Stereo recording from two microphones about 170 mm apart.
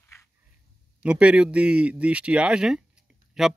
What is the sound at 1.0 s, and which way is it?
Speech, 5° right (ahead or behind).